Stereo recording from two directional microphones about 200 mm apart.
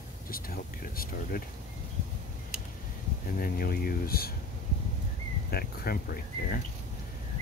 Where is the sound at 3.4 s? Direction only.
50° left (ahead or behind).